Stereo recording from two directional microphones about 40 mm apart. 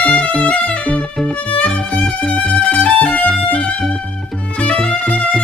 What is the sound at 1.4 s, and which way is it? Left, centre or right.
Music, left.